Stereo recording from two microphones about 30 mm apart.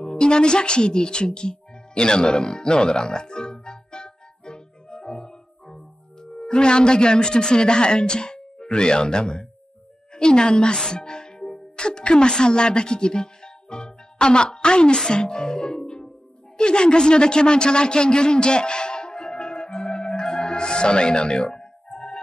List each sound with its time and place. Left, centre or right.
0.0 s music: left
6.2 s a woman's voice: left
10.8 s music: left
12.0 s speech: left
15.0 s music: left
16.5 s a sound: left